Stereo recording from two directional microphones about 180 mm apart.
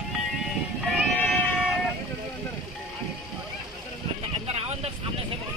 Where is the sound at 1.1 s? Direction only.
10° left (ahead or behind).